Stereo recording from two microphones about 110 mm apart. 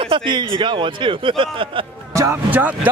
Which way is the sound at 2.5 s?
15° right (ahead or behind).